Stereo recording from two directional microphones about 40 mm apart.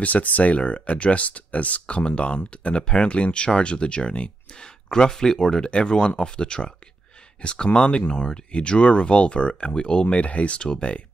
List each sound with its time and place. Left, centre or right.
0.0 s speech: left; by 5.7 s centre
5.7 s speech: left